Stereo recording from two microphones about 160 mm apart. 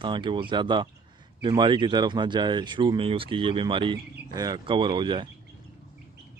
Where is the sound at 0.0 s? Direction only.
30° right (ahead or behind).